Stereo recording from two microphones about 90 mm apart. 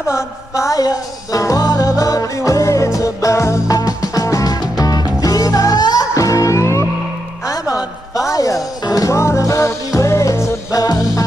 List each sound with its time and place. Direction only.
0.1 s music: 35° left (ahead or behind)